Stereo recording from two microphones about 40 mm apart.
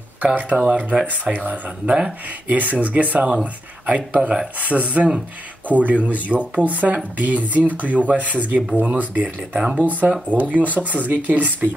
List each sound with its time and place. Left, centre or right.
0.2 s speech: right
1.3 s speech: right
1.9 s speech: right
2.4 s speech: right